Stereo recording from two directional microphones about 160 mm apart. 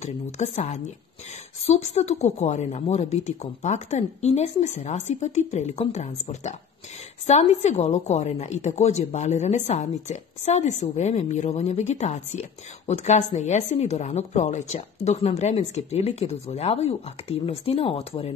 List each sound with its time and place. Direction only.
0.0 s a woman's voice: 45° left (ahead or behind)